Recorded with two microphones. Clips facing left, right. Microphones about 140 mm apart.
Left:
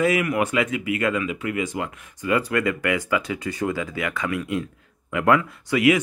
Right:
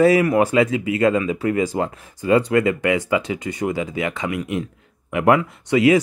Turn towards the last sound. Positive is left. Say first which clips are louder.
# right 4 dB
turn(degrees=-30)  # may be behind; listen again after turning